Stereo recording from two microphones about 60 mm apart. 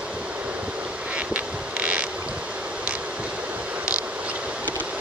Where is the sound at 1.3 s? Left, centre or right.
Right.